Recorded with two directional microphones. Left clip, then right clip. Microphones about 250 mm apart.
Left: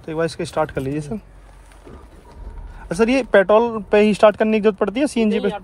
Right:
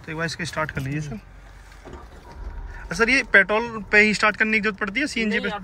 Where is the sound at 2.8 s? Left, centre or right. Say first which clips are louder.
Left 2 dB; centre.